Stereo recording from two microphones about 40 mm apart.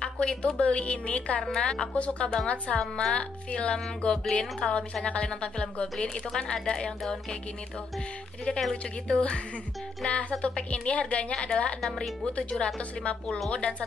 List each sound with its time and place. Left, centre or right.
0.0 s speech: left
1.5 s speech: centre
2.0 s speech: left
2.8 s speech: centre
3.2 s speech: left
6.0 s speech: centre
8.5 s a woman's voice: centre; by 11.3 s left
11.3 s speech: left
11.8 s speech: centre
12.4 s speech: left